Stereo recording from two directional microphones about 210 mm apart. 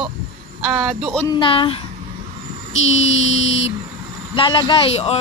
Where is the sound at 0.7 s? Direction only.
10° right (ahead or behind).